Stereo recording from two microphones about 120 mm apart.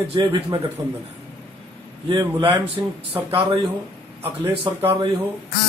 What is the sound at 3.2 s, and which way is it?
Speech, 50° right (ahead or behind).